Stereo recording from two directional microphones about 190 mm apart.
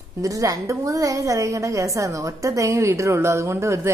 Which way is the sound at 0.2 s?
15° right (ahead or behind).